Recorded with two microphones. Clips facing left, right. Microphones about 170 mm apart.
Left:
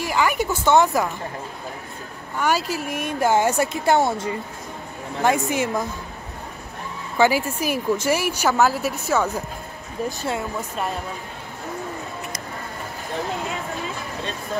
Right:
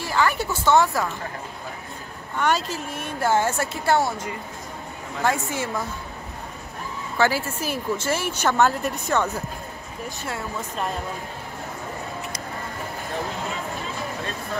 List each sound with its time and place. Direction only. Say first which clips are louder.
0.0 s a woman's voice: left 2 dB; 15° left (ahead or behind)
2.3 s a woman's voice: left 1 dB; 10° left (ahead or behind)
5.2 s a woman's voice: left 4 dB; 15° left (ahead or behind)
7.2 s a woman's voice: left 4 dB; 15° left (ahead or behind)